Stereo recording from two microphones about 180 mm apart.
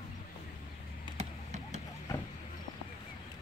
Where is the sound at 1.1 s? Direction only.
40° right (ahead or behind).